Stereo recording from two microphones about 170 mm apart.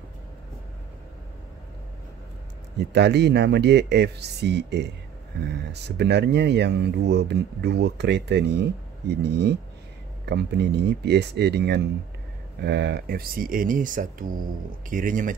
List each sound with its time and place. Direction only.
2.8 s speech: 80° right; by 15.3 s 50° right (ahead or behind)